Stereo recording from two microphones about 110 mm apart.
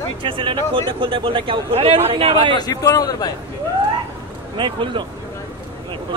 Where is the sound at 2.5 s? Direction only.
35° left (ahead or behind).